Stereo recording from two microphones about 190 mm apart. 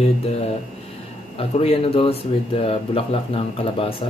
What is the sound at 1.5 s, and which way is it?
Speech, 30° left (ahead or behind).